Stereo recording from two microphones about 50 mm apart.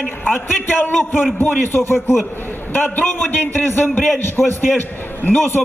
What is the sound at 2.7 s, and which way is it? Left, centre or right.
A man's voice, left.